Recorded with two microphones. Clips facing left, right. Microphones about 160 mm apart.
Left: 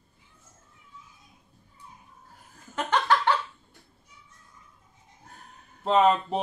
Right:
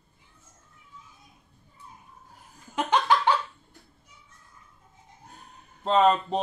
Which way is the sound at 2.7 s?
10° right (ahead or behind).